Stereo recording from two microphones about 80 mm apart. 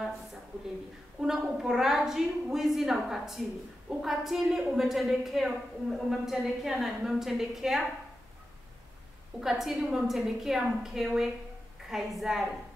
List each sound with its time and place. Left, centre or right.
1.2 s a woman's voice: centre
9.4 s a woman's voice: centre